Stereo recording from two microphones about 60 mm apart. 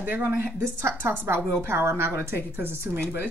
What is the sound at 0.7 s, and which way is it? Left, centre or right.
Speech, right.